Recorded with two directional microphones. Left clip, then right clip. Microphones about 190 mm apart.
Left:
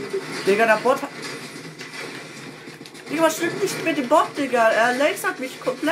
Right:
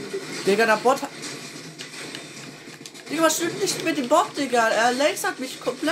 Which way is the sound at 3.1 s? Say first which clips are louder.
Left 1 dB; 25° right (ahead or behind).